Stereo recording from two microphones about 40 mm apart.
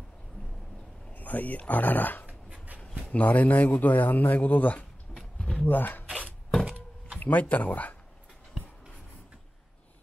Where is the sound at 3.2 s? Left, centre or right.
Left.